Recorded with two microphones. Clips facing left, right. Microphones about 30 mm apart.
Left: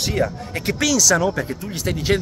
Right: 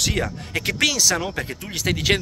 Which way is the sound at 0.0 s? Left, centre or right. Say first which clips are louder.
Left 2 dB; right.